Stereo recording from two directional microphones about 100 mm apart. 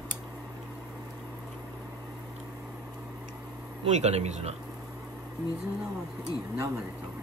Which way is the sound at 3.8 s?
90° right.